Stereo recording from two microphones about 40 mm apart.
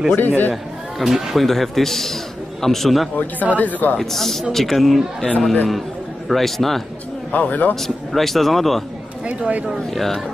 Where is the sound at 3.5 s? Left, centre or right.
Left.